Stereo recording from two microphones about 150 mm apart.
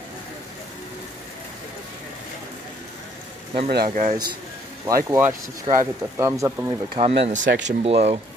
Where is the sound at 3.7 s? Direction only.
90° right.